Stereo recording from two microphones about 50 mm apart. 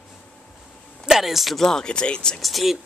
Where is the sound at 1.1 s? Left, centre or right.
Centre.